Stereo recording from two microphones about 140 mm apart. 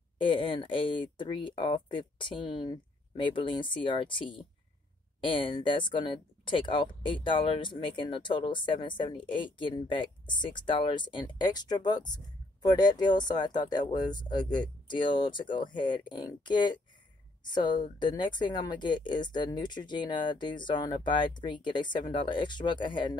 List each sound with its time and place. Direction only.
0.2 s speech: 35° left (ahead or behind)